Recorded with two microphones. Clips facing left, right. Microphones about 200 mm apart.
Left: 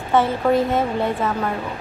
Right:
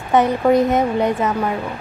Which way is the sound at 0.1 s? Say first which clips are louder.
Right 3 dB; 20° right (ahead or behind).